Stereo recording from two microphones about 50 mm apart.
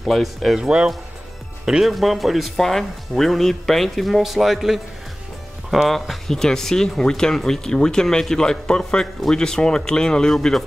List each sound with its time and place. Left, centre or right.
0.0 s speech: centre
0.6 s speech: centre
1.7 s speech: centre